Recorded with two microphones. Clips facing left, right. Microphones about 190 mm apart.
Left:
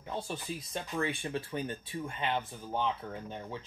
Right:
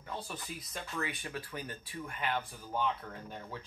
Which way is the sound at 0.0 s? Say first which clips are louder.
Left 4 dB; 25° left (ahead or behind).